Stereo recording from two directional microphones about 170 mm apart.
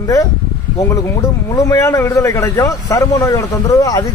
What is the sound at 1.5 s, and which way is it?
A man's voice, 15° left (ahead or behind).